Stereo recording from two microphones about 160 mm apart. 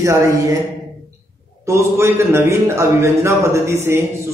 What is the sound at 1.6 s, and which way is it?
A man's voice, 15° right (ahead or behind).